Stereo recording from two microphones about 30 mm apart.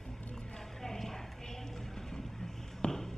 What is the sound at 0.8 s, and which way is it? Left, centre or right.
Clip-clop, centre.